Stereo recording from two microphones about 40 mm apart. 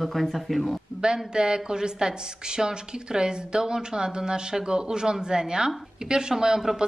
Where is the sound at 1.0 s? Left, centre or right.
Centre.